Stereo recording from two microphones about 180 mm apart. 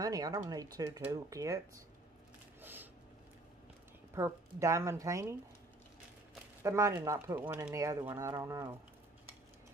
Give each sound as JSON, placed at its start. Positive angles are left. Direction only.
{"t": 0.0, "sound": "speech", "side_deg": -20}
{"t": 2.6, "sound": "a sound", "side_deg": -10}
{"t": 4.1, "sound": "speech", "side_deg": -15}
{"t": 6.6, "sound": "speech", "side_deg": -15}